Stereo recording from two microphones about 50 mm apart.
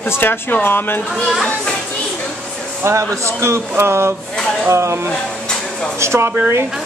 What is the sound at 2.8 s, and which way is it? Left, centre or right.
A man's voice, right.